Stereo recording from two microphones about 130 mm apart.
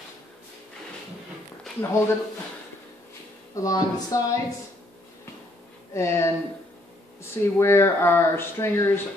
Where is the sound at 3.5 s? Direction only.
30° left (ahead or behind).